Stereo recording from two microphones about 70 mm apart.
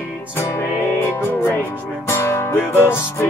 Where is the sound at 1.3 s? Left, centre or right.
Left.